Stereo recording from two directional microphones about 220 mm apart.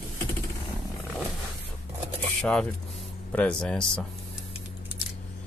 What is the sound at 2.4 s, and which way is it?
Speech, 5° left (ahead or behind).